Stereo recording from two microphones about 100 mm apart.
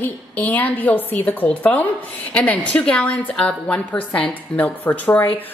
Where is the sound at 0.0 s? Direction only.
15° left (ahead or behind).